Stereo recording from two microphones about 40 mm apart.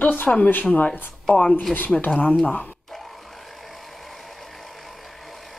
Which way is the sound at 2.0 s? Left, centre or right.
Left.